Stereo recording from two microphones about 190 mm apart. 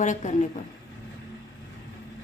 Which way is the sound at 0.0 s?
40° left (ahead or behind).